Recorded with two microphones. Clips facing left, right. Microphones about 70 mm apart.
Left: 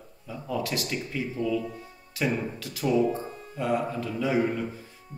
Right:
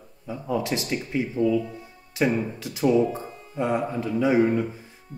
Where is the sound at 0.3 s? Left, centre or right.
Right.